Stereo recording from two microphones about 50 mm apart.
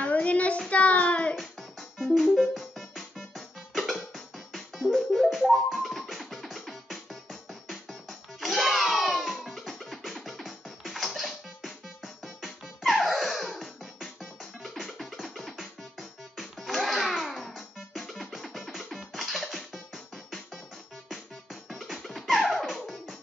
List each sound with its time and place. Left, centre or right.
0.0 s a sound: left
1.3 s music: centre
21.6 s music: centre